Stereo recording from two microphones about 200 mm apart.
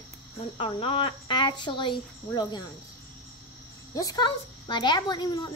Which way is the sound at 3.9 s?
20° left (ahead or behind).